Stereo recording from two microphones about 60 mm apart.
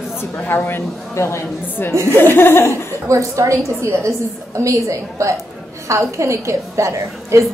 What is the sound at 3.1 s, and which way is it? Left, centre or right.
A woman's voice, right.